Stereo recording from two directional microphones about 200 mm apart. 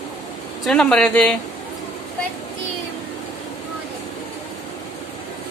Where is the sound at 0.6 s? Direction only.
5° left (ahead or behind).